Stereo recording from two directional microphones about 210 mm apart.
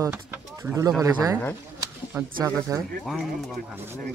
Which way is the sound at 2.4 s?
15° right (ahead or behind).